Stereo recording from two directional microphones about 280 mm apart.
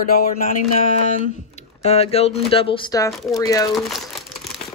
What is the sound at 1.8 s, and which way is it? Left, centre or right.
Speech, left.